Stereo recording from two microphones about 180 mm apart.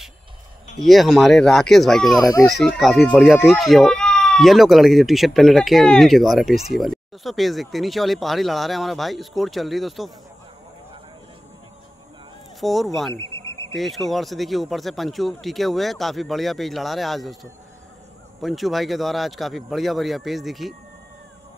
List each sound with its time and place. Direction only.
0.7 s speech: centre (ahead or behind)
12.5 s speech: centre (ahead or behind)
13.1 s a sound: 15° left (ahead or behind)
13.7 s speech: centre (ahead or behind)